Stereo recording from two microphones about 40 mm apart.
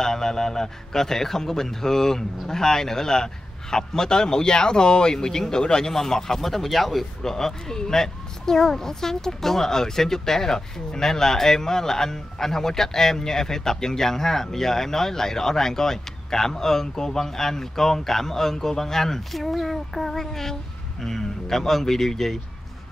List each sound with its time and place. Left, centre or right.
0.0 s speech: centre